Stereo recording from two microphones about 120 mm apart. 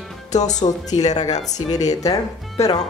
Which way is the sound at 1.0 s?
35° left (ahead or behind).